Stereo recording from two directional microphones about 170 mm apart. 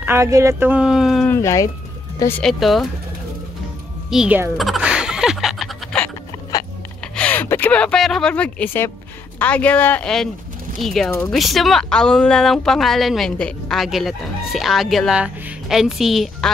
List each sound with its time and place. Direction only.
0.0 s speech: 15° right (ahead or behind)
1.3 s speech: 20° left (ahead or behind)
2.4 s a woman's voice: centre (ahead or behind)
4.1 s a sound: 5° right (ahead or behind)
7.2 s a sound: 10° left (ahead or behind)
9.4 s a woman's voice: 10° left (ahead or behind)